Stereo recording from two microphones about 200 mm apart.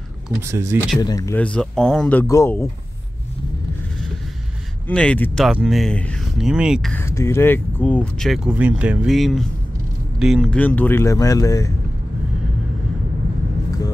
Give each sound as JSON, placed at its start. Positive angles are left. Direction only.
{"t": 0.4, "sound": "speech", "side_deg": -15}
{"t": 0.9, "sound": "speech", "side_deg": 15}
{"t": 4.8, "sound": "speech", "side_deg": 5}